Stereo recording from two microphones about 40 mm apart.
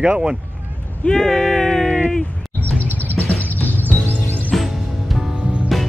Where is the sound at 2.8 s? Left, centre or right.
Left.